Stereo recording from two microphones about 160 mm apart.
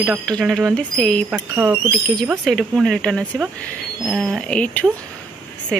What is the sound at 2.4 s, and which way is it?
Speech, centre (ahead or behind).